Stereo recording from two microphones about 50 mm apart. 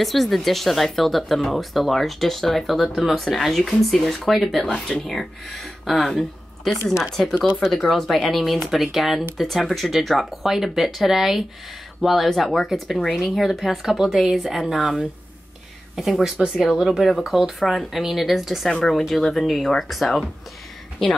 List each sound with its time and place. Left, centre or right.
0.0 s speech: centre
14.8 s speech: centre
16.0 s speech: centre
18.7 s speech: centre